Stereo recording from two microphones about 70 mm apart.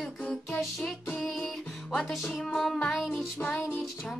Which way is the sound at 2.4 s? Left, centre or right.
Centre.